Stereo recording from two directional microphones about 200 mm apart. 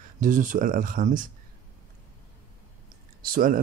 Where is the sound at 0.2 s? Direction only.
40° right (ahead or behind).